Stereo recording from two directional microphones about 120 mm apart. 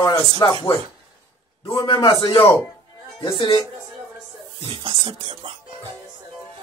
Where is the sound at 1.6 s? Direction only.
45° left (ahead or behind).